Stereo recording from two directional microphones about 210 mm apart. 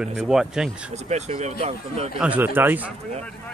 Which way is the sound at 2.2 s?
10° right (ahead or behind).